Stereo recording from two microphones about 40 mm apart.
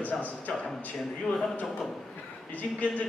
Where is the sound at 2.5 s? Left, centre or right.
Left.